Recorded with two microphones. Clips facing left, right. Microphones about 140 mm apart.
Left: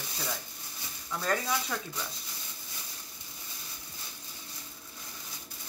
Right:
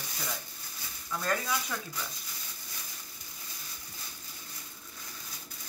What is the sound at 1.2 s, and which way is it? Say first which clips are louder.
Speech: left 2 dB; 30° left (ahead or behind).